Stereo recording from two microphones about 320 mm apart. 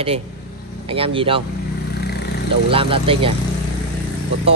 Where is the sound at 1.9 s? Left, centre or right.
Left.